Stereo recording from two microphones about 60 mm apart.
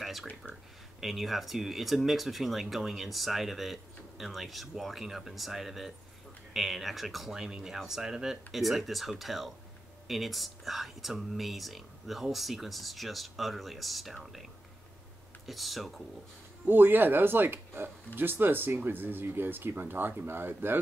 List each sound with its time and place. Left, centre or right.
0.0 s a sound: centre
1.0 s speech: centre
16.6 s speech: right